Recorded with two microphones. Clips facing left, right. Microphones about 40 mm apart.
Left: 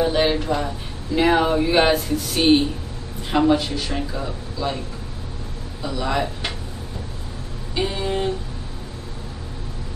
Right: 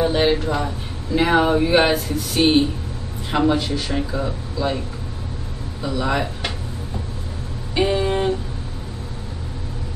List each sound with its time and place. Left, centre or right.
0.0 s a man's voice: centre
5.8 s speech: centre
7.7 s a sound: centre